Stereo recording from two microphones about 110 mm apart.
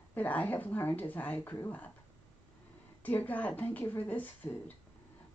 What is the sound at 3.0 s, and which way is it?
Speech, 15° left (ahead or behind).